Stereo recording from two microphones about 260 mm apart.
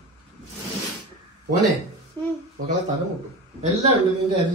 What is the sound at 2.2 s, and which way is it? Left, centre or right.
Speech, centre.